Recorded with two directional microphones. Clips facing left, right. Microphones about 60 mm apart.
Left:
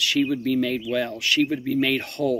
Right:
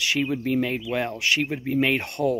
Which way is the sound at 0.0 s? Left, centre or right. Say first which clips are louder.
Left 2 dB; right.